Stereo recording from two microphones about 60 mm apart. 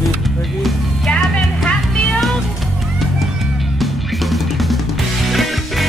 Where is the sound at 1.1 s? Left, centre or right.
Centre.